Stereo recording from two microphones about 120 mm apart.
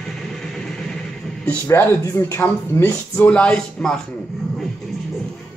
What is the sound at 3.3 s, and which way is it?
Music, 5° left (ahead or behind).